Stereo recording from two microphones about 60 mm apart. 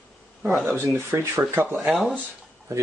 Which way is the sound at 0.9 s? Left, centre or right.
Right.